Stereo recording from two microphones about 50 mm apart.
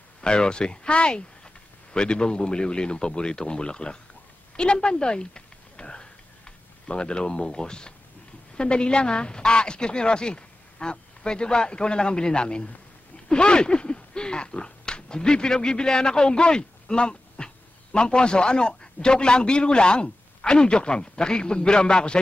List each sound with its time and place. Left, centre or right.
0.2 s speech: centre
4.6 s a sound: centre
6.9 s a woman's voice: centre